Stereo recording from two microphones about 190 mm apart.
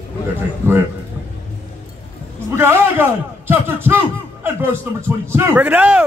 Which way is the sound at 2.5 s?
10° right (ahead or behind).